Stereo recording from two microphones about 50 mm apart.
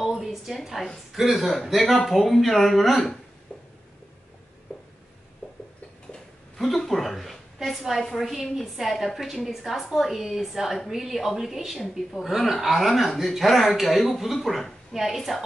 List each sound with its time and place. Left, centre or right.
0.0 s a woman's voice: centre
4.7 s a sound: centre
6.5 s a woman's voice: centre